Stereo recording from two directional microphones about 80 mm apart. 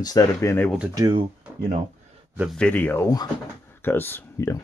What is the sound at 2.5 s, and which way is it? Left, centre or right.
Speech, centre.